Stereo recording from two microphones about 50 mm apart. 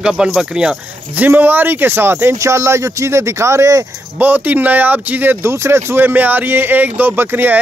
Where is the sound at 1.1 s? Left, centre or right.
Right.